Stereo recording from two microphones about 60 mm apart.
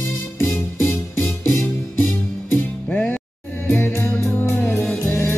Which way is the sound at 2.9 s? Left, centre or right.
Left.